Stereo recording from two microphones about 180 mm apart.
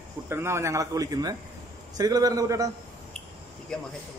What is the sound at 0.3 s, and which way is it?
A man's voice, 15° right (ahead or behind).